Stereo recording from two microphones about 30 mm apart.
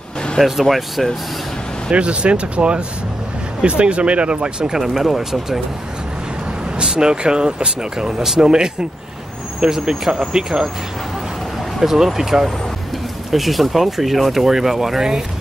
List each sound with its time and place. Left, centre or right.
0.4 s speech: centre
1.9 s speech: right
4.7 s speech: centre
6.8 s speech: right
11.8 s speech: centre
13.3 s speech: centre